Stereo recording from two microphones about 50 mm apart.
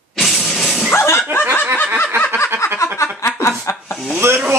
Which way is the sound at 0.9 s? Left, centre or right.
Left.